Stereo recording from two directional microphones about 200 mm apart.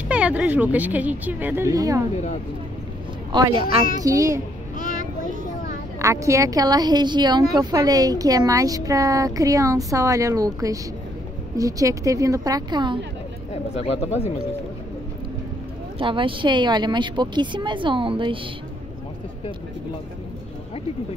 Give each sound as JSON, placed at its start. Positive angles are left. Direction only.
{"t": 0.1, "sound": "a woman's voice", "side_deg": -5}
{"t": 3.3, "sound": "a woman's voice", "side_deg": -20}
{"t": 4.7, "sound": "child singing", "side_deg": 40}
{"t": 5.9, "sound": "a woman's voice", "side_deg": -15}
{"t": 13.5, "sound": "speech", "side_deg": 30}
{"t": 16.0, "sound": "speech", "side_deg": -25}